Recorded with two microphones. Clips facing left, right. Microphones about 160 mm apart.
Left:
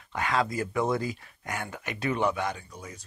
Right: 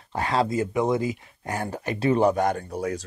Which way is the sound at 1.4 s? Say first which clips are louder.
Right 6 dB; 35° right (ahead or behind).